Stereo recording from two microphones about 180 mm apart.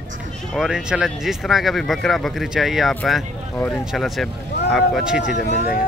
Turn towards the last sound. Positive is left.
turn(degrees=40)  # may be behind; listen again after turning